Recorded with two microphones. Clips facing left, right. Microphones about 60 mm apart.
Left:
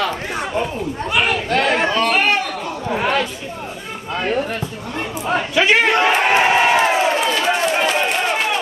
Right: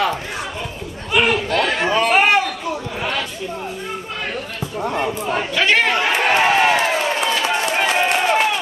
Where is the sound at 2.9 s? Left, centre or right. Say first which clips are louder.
Left 6 dB; left.